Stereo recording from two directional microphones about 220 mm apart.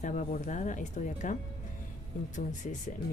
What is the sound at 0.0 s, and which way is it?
Speech, 35° left (ahead or behind).